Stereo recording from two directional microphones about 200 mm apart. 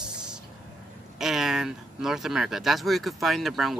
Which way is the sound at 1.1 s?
Centre (ahead or behind).